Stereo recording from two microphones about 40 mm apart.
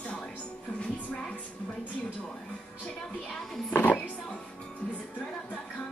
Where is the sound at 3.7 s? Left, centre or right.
Left.